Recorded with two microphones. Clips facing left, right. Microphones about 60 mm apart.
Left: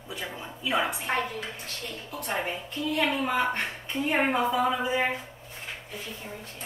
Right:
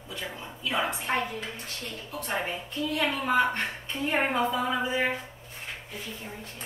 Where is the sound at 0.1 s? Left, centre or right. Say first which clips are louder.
Left 1 dB; centre.